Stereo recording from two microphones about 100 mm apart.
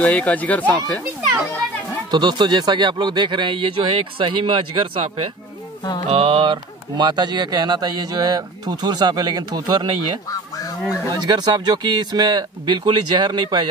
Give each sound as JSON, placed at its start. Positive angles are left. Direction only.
{"t": 0.0, "sound": "speech", "side_deg": 15}
{"t": 2.0, "sound": "speech", "side_deg": -45}
{"t": 6.0, "sound": "speech", "side_deg": -65}
{"t": 11.1, "sound": "speech", "side_deg": -40}